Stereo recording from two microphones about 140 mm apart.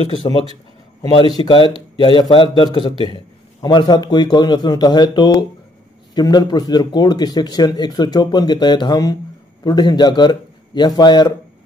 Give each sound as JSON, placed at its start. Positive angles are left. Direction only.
{"t": 0.1, "sound": "a man's voice", "side_deg": 35}